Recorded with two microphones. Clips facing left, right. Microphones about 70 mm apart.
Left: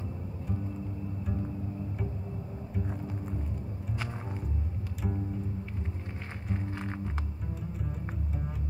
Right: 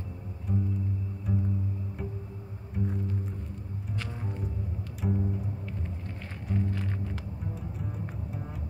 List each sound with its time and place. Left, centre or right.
0.5 s music: centre
2.7 s music: centre
6.5 s music: left
7.9 s double bass: centre